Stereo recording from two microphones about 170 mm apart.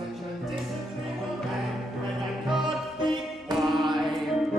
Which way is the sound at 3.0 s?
25° right (ahead or behind).